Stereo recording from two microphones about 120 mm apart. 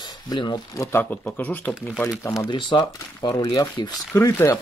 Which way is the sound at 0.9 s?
15° left (ahead or behind).